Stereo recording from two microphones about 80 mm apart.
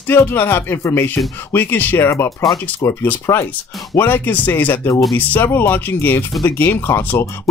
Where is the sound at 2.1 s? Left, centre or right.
Left.